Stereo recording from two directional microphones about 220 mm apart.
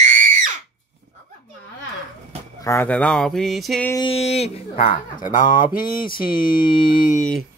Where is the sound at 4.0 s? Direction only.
25° left (ahead or behind).